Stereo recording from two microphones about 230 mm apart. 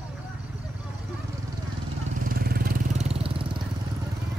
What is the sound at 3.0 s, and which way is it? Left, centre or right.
Vehicle, right.